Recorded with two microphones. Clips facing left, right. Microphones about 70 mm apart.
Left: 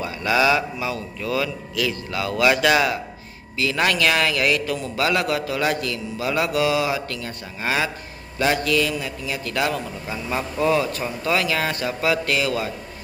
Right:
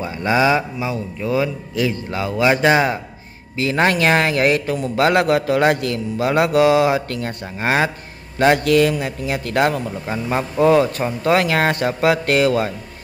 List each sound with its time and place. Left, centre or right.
0.0 s a man's voice: right